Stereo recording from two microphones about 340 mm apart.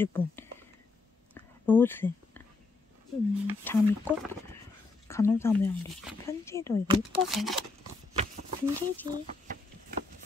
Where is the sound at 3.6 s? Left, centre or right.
Centre.